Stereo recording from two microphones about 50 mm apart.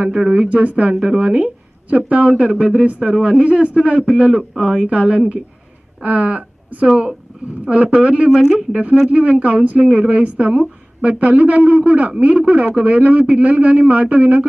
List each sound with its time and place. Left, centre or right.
0.0 s a woman's voice: centre
8.4 s speech: centre
9.1 s a woman's voice: right